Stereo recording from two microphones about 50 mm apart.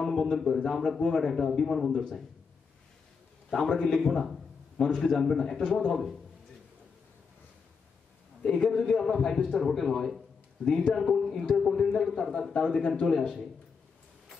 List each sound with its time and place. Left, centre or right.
0.0 s a man's voice: centre
3.4 s a man's voice: centre
4.0 s a sound: centre
4.8 s a man's voice: centre
8.4 s a man's voice: centre
10.6 s a man's voice: centre
10.9 s a man's voice: centre